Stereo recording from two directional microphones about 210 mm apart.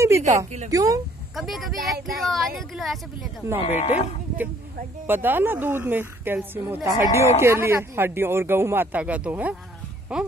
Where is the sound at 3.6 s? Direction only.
30° left (ahead or behind).